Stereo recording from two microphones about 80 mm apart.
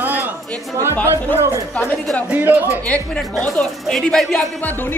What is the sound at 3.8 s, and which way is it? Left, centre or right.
Speech, centre.